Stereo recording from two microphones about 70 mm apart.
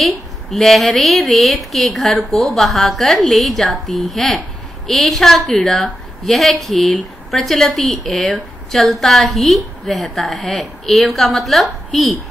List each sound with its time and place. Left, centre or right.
0.0 s a woman's voice: centre